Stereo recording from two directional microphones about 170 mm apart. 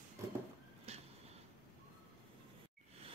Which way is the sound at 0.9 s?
40° right (ahead or behind).